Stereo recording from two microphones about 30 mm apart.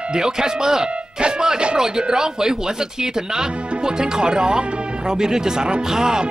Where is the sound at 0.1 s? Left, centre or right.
Right.